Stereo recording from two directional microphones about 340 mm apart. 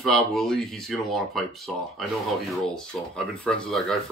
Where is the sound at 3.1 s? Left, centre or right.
Centre.